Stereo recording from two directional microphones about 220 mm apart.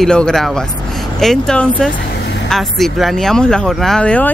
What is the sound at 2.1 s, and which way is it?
Vehicle, 50° left (ahead or behind).